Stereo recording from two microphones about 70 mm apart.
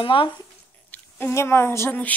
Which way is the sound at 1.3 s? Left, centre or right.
Left.